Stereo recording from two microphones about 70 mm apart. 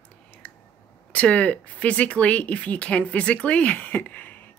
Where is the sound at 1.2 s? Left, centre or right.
Centre.